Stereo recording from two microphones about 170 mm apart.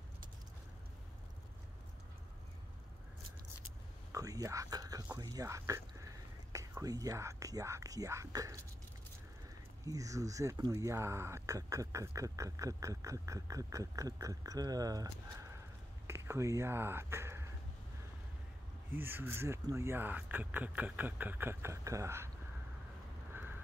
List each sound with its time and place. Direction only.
4.1 s speech: 20° right (ahead or behind)
9.8 s speech: 20° right (ahead or behind)
18.9 s speech: 10° right (ahead or behind)